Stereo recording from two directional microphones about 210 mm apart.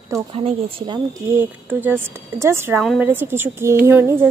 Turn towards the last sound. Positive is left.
turn(degrees=-10)  # may be behind; listen again after turning